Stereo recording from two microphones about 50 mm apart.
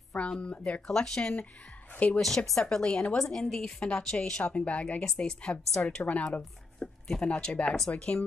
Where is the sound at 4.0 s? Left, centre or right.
Centre.